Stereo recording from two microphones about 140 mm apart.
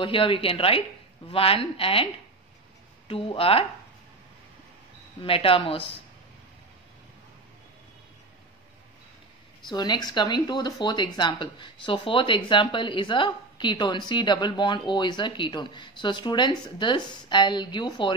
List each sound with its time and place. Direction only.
0.0 s speech: 40° left (ahead or behind)
3.1 s speech: 40° left (ahead or behind)
5.2 s speech: 40° left (ahead or behind)
9.7 s speech: 30° left (ahead or behind)